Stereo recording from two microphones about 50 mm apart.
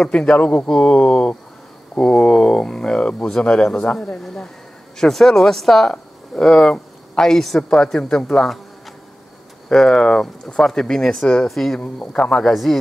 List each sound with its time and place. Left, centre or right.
0.1 s speech: centre
9.7 s speech: centre
11.4 s speech: centre
11.8 s speech: left